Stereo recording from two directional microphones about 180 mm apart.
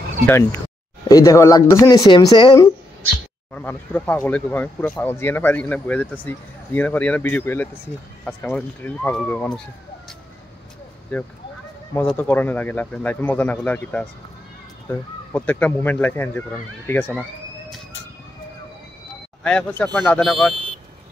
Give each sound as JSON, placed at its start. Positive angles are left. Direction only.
{"t": 1.0, "sound": "speech", "side_deg": 20}
{"t": 3.5, "sound": "speech", "side_deg": 10}
{"t": 11.1, "sound": "speech", "side_deg": 5}
{"t": 19.4, "sound": "speech", "side_deg": 5}